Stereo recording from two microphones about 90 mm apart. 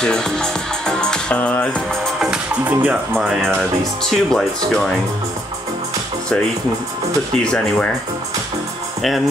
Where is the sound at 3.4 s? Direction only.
5° left (ahead or behind).